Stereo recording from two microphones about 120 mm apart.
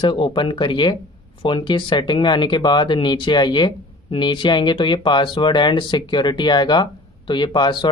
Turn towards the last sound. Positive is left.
turn(degrees=40)  # may be behind; listen again after turning